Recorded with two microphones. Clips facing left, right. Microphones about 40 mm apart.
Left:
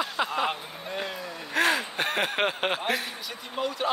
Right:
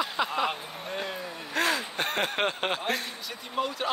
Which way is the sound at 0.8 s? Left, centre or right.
Left.